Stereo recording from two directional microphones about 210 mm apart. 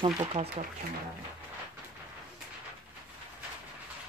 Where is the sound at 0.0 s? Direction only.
30° right (ahead or behind).